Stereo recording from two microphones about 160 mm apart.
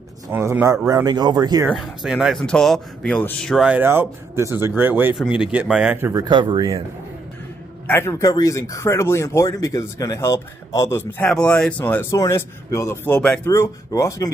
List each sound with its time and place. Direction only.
0.3 s speech: 15° right (ahead or behind)
1.7 s speech: centre (ahead or behind)
3.8 s speech: 15° right (ahead or behind)
6.2 s speech: 30° right (ahead or behind)
7.8 s speech: 15° left (ahead or behind)
13.5 s speech: 20° left (ahead or behind)